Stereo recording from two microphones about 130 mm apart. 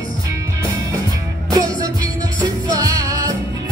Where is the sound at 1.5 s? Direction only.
30° right (ahead or behind).